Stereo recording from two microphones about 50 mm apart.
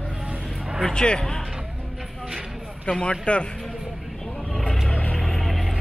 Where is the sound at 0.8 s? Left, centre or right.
Centre.